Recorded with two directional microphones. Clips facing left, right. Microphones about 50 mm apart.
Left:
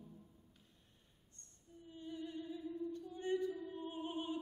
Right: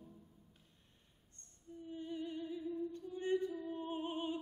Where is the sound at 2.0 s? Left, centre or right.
Right.